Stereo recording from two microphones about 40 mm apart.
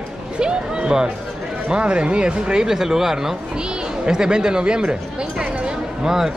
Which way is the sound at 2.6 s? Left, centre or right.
Centre.